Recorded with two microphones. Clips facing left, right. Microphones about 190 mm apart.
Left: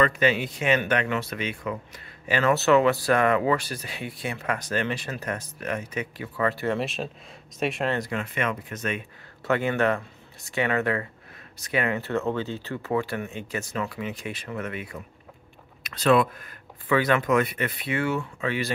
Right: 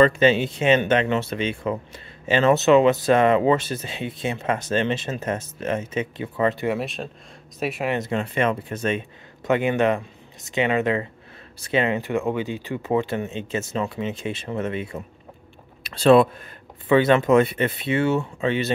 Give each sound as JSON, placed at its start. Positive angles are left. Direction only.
{"t": 0.0, "sound": "speech", "side_deg": -25}
{"t": 6.7, "sound": "speech", "side_deg": 0}
{"t": 7.9, "sound": "speech", "side_deg": -25}
{"t": 9.4, "sound": "speech", "side_deg": -20}